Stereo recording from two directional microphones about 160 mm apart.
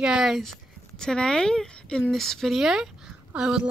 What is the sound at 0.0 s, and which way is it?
Speech, 5° right (ahead or behind).